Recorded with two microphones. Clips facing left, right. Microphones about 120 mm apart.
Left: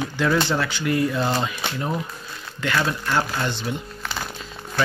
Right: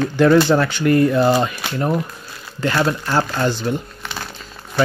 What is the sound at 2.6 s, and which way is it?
Speech, 35° right (ahead or behind).